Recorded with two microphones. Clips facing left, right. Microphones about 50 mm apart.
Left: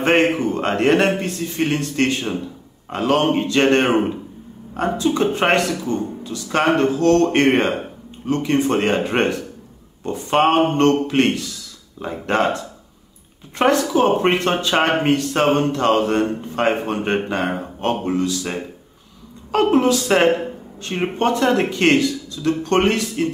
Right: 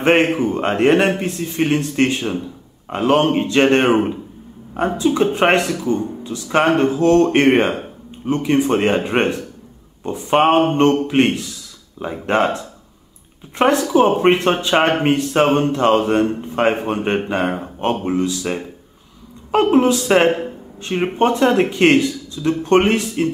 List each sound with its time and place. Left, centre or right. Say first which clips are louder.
0.0 s a man's voice: right 2 dB; centre
3.8 s speech: right 2 dB; centre
4.7 s a man's voice: right 2 dB; centre
8.3 s a man's voice: right 2 dB; centre
13.9 s a man's voice: right 3 dB; centre
19.5 s speech: right 2 dB; centre